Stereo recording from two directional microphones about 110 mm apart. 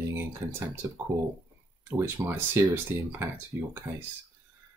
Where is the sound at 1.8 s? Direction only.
20° right (ahead or behind).